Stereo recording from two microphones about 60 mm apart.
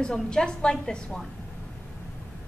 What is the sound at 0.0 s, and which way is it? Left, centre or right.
A woman's voice, centre.